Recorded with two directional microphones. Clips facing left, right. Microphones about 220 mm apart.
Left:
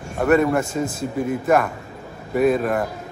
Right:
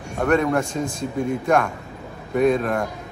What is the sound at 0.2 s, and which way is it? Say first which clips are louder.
A man's voice: left 2 dB; 5° left (ahead or behind).